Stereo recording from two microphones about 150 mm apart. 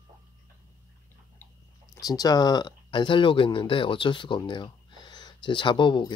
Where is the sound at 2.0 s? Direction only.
25° left (ahead or behind).